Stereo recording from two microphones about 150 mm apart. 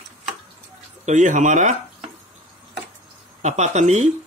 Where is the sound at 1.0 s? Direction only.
55° right (ahead or behind).